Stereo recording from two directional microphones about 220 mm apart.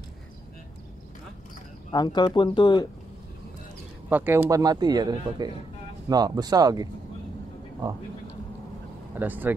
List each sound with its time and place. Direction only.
1.9 s speech: 20° left (ahead or behind)
4.1 s speech: 10° right (ahead or behind)
9.1 s speech: 10° right (ahead or behind)